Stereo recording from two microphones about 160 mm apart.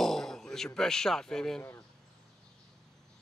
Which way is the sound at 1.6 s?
15° left (ahead or behind).